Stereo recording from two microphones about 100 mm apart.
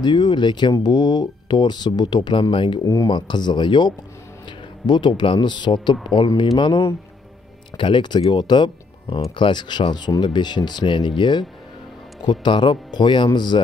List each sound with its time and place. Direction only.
0.0 s speech: 50° left (ahead or behind)
7.7 s speech: 55° left (ahead or behind)